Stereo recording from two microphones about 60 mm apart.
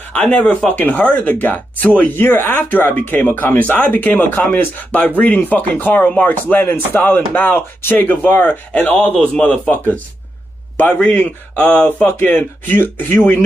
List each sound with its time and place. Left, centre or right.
0.1 s speech: centre
9.0 s a man's voice: centre
11.0 s speech: left
12.2 s speech: left